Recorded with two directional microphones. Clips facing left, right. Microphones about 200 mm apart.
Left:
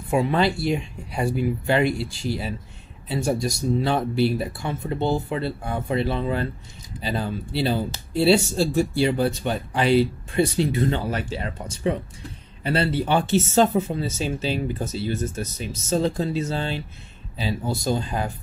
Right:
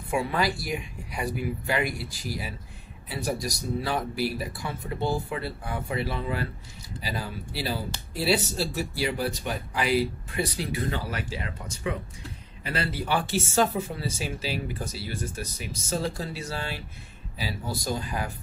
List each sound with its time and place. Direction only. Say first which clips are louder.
0.1 s speech: left 6 dB; 25° left (ahead or behind)